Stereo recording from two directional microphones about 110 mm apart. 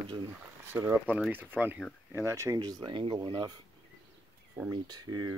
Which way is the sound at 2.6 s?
40° right (ahead or behind).